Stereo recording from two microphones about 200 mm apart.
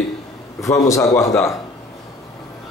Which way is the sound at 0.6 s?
15° left (ahead or behind).